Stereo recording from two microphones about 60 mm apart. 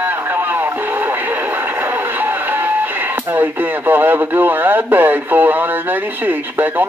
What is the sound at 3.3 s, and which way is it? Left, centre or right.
Speech, right.